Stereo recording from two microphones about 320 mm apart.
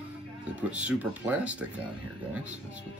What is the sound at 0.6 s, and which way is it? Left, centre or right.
Speech, centre.